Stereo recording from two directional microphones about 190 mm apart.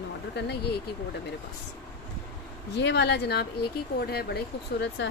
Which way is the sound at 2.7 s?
65° left (ahead or behind).